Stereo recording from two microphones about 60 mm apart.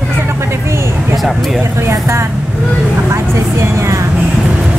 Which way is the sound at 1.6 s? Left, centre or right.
Right.